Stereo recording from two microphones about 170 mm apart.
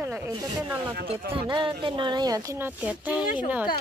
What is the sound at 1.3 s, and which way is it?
Speech, 30° right (ahead or behind).